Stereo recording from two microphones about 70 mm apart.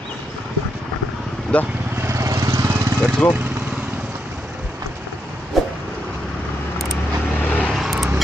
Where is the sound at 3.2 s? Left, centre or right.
Left.